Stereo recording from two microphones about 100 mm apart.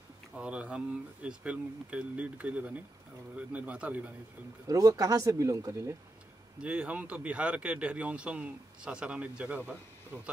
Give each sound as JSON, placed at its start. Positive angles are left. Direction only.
{"t": 0.4, "sound": "speech", "side_deg": -10}
{"t": 4.6, "sound": "speech", "side_deg": -35}
{"t": 6.6, "sound": "speech", "side_deg": -10}